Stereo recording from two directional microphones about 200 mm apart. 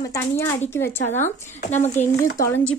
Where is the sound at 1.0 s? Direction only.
35° left (ahead or behind).